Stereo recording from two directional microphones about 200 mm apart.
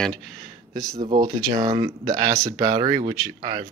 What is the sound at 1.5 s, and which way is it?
Speech, 20° right (ahead or behind).